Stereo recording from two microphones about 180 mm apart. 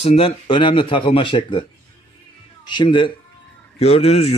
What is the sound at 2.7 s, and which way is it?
A man's voice, 25° left (ahead or behind).